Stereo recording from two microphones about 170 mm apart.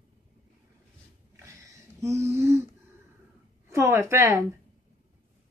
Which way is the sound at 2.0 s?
15° right (ahead or behind).